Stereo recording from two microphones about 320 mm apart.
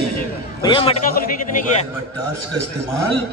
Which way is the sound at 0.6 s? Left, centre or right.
Centre.